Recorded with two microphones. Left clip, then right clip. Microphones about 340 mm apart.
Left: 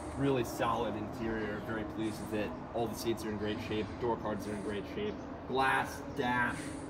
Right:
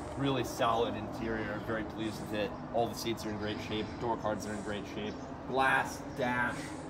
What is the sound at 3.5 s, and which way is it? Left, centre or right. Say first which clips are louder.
Speech: even; right.